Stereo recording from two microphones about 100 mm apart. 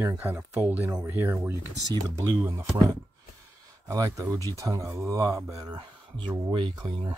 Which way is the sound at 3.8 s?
35° right (ahead or behind).